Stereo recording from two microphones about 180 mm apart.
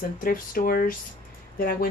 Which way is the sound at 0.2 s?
50° left (ahead or behind).